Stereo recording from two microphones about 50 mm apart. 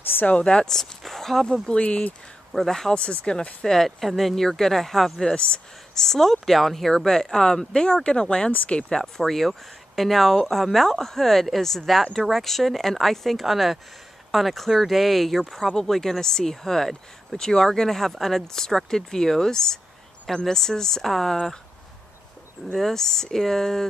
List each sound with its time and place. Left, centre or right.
0.0 s a sound: left
0.4 s speech: centre
0.7 s speech: centre
1.7 s speech: left
2.5 s speech: centre
2.9 s speech: centre
3.6 s speech: centre
22.7 s speech: centre